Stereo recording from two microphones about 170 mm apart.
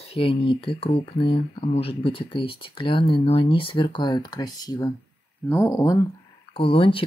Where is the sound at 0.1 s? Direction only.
30° left (ahead or behind).